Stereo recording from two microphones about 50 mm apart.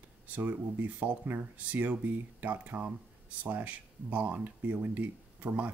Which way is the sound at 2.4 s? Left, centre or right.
Right.